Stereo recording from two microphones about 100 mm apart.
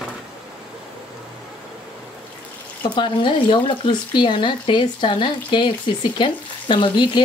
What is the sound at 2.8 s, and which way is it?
Speech, 55° left (ahead or behind).